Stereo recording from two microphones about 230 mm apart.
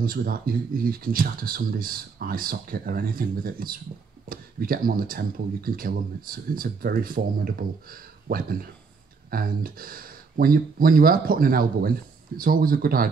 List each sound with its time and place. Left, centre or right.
0.0 s speech: right